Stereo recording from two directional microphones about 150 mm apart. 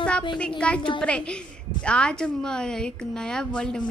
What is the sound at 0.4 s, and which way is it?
A woman's voice, 5° left (ahead or behind).